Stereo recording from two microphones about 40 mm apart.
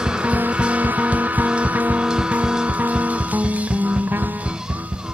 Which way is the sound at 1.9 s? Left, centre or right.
Right.